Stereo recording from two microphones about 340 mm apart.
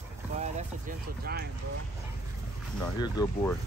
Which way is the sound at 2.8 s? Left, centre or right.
Centre.